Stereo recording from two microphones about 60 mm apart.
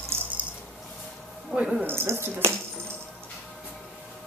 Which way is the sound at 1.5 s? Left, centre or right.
Centre.